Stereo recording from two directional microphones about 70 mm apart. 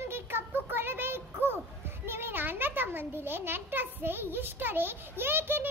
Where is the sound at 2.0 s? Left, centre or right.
Right.